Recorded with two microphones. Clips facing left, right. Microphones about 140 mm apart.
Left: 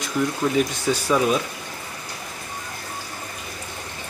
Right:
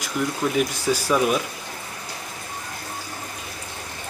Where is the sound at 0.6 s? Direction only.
5° right (ahead or behind).